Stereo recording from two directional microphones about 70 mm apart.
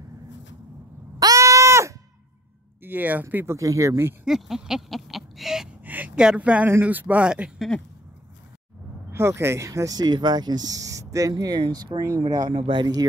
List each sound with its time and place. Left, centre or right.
1.2 s a sound: right
2.8 s speech: right
3.4 s speech: right
4.3 s speech: centre
5.9 s a sound: right
6.1 s speech: centre
9.1 s speech: right
9.7 s speech: right